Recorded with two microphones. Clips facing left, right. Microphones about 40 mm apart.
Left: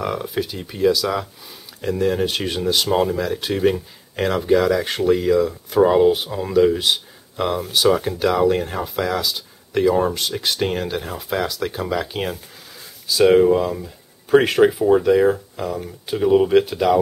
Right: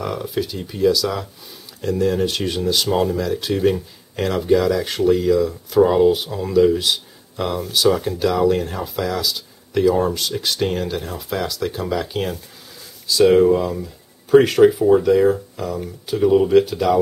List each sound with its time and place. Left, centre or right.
0.0 s speech: centre